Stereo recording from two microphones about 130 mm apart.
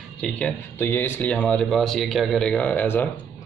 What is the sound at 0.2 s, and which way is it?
A man's voice, 10° left (ahead or behind).